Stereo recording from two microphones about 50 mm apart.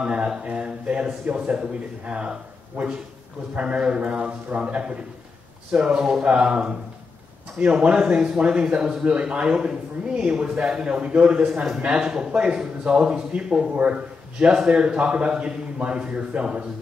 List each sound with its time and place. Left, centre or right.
0.0 s speech: right